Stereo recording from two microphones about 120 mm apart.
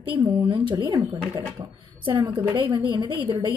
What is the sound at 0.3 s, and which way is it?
Speech, 40° right (ahead or behind).